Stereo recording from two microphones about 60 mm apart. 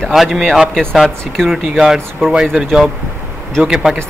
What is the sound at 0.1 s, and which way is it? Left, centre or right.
Speech, centre.